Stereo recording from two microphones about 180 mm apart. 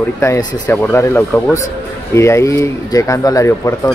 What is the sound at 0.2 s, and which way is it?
Speech, 15° left (ahead or behind).